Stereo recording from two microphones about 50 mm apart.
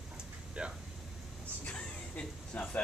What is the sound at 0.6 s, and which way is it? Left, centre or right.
Speech, centre.